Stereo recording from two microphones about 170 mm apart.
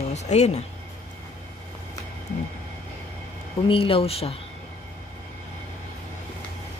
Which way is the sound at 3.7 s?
30° left (ahead or behind).